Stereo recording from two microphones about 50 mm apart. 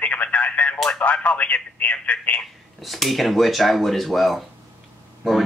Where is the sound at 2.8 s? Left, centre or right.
Centre.